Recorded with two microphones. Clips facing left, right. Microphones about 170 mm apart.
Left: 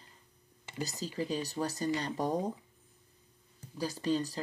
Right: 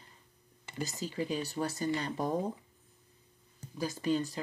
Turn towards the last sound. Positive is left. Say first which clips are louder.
# even
turn(degrees=35)  # may be behind; listen again after turning